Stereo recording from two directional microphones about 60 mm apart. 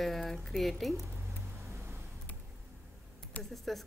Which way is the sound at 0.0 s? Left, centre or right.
Centre.